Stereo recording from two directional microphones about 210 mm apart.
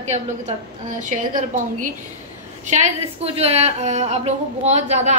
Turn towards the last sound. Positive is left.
turn(degrees=-30)  # may be behind; listen again after turning